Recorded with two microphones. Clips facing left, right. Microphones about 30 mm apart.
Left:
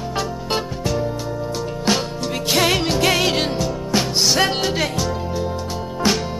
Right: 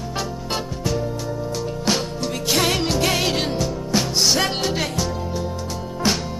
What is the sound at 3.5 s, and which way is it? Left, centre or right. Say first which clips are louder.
Music: left 1 dB; centre.